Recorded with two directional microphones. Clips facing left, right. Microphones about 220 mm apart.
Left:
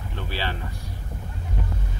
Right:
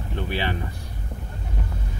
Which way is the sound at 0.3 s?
15° right (ahead or behind).